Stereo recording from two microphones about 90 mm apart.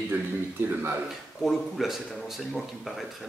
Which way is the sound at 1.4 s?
Centre (ahead or behind).